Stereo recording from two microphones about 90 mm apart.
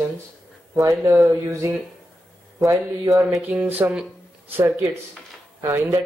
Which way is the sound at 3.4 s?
15° right (ahead or behind).